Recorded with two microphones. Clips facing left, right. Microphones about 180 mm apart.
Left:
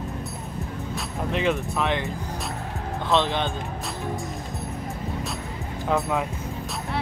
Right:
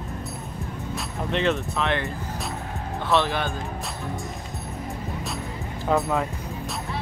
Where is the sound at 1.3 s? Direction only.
10° left (ahead or behind).